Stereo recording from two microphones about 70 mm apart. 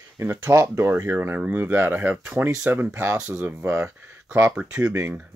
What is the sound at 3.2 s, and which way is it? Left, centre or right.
Speech, centre.